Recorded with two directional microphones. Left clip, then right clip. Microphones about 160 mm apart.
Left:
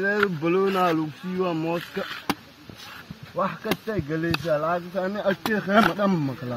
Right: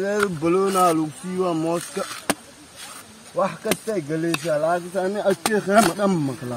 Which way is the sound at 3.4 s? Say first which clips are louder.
Right 4 dB; 5° right (ahead or behind).